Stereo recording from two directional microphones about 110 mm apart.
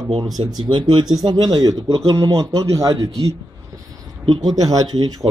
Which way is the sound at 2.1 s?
30° right (ahead or behind).